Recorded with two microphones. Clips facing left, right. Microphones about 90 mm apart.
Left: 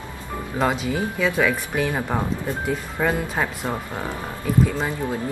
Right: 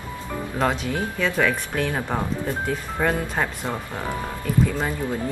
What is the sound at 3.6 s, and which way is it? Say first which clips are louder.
Speech: left 1 dB; 15° left (ahead or behind).